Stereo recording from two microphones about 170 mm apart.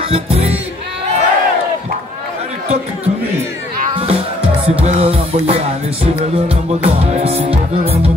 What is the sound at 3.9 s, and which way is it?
Music, 35° right (ahead or behind).